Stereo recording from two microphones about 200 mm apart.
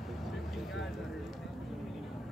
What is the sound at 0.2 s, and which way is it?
Vehicle, centre (ahead or behind).